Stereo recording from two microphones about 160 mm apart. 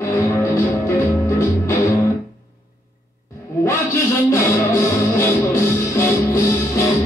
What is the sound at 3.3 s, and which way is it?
Music, 20° left (ahead or behind).